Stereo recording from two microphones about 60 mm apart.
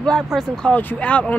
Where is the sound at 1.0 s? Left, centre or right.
Left.